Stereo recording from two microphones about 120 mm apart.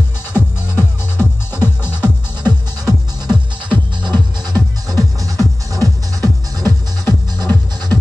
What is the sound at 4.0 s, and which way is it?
Music, 40° right (ahead or behind).